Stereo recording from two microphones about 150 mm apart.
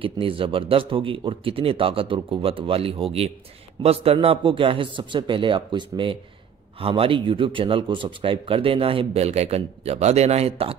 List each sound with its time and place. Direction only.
0.0 s a man's voice: 35° right (ahead or behind)